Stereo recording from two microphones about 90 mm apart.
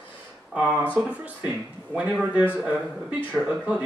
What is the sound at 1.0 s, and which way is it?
A man's voice, 15° right (ahead or behind).